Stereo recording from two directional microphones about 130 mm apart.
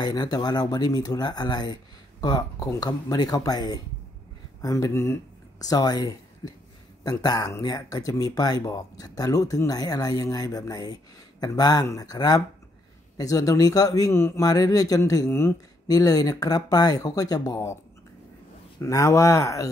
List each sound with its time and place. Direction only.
0.0 s speech: 30° left (ahead or behind)
18.8 s speech: 25° left (ahead or behind)